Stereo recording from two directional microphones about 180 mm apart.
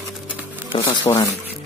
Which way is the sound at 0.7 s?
25° left (ahead or behind).